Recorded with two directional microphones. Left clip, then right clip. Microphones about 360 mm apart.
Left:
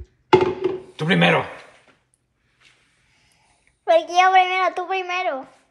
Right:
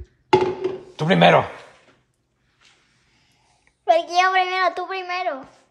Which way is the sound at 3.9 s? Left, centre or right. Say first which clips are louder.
Left 2 dB; centre.